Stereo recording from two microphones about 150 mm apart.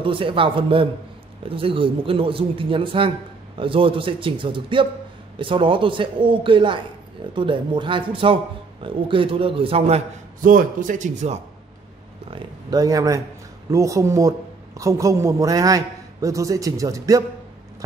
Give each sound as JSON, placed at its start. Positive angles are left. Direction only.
{"t": 0.0, "sound": "speech", "side_deg": -35}
{"t": 10.4, "sound": "a man's voice", "side_deg": -65}
{"t": 12.3, "sound": "speech", "side_deg": -35}
{"t": 12.7, "sound": "a man's voice", "side_deg": -25}